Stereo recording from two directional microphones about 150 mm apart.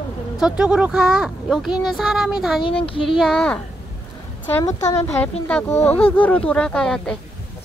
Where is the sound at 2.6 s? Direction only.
35° left (ahead or behind).